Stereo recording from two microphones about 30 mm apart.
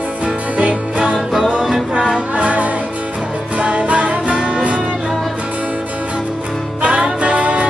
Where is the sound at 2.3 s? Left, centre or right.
Right.